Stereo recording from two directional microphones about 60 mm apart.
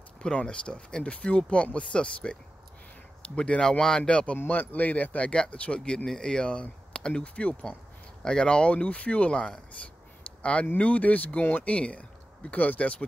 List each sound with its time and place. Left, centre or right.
0.2 s speech: centre
3.3 s speech: centre
4.4 s speech: left